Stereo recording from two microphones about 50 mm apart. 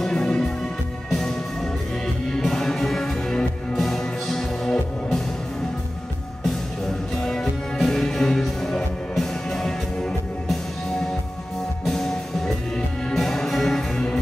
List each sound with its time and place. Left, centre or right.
0.0 s music: centre
2.4 s music: centre
7.2 s music: centre
11.9 s music: centre